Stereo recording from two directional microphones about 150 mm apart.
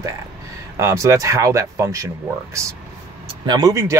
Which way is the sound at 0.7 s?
20° right (ahead or behind).